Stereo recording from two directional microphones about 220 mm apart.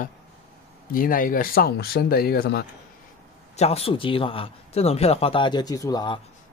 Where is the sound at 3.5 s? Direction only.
30° left (ahead or behind).